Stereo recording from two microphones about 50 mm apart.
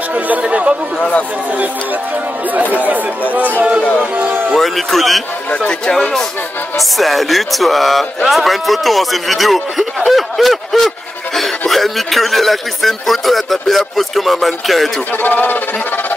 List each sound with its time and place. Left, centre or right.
0.4 s speech: right
0.9 s speech: centre
2.7 s speech: right
4.0 s a sound: right
4.5 s speech: centre
5.7 s speech: centre
6.8 s speech: centre
15.2 s speech: left